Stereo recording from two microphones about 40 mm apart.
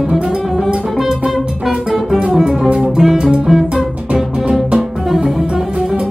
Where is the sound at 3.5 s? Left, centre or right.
Centre.